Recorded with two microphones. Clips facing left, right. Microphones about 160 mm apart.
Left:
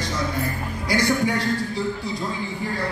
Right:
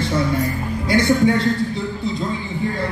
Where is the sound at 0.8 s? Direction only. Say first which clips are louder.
Right 6 dB; 25° right (ahead or behind).